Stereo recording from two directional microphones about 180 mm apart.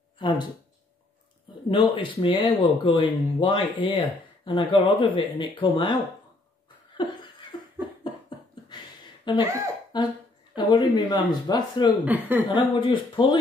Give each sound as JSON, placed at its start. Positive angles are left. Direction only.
{"t": 0.2, "sound": "speech", "side_deg": 25}
{"t": 1.7, "sound": "speech", "side_deg": 25}
{"t": 7.0, "sound": "laughter", "side_deg": 25}
{"t": 7.5, "sound": "cough", "side_deg": 30}
{"t": 8.6, "sound": "a sound", "side_deg": 25}
{"t": 9.9, "sound": "speech", "side_deg": 25}
{"t": 12.0, "sound": "speech", "side_deg": -10}
{"t": 12.5, "sound": "speech", "side_deg": 25}